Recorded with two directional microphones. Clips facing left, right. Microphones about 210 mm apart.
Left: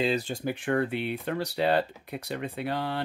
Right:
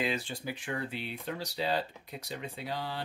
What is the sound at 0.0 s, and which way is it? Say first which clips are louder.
Speech: left 6 dB; 40° left (ahead or behind).